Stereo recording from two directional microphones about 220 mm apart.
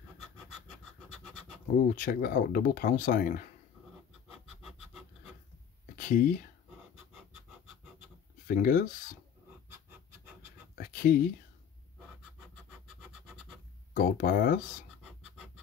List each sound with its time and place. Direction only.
1.8 s speech: 35° left (ahead or behind)
5.9 s speech: 35° left (ahead or behind)
8.5 s speech: 40° left (ahead or behind)
10.8 s whispering: 40° left (ahead or behind)
13.9 s speech: 40° left (ahead or behind)